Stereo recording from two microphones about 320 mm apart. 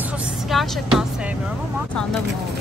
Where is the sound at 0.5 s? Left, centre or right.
Centre.